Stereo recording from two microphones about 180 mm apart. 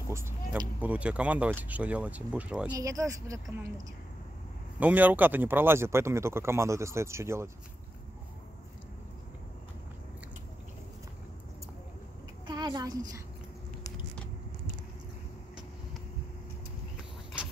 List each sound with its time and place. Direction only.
0.1 s speech: 15° right (ahead or behind)
2.7 s speech: 20° right (ahead or behind)
4.7 s speech: 10° right (ahead or behind)
12.4 s a child's voice: 25° right (ahead or behind)